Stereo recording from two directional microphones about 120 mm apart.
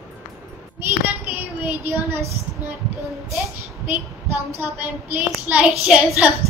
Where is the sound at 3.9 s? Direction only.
20° right (ahead or behind).